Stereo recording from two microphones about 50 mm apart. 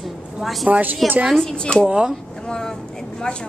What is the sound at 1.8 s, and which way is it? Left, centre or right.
Speech, right.